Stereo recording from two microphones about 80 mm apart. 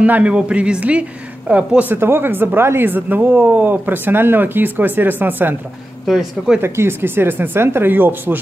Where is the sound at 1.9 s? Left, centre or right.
Right.